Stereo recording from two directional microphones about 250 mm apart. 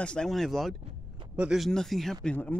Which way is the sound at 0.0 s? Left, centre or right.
Centre.